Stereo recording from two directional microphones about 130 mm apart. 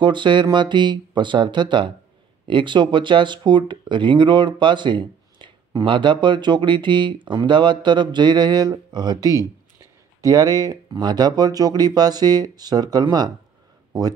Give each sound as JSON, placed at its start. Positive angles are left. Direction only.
{"t": 0.0, "sound": "speech", "side_deg": -35}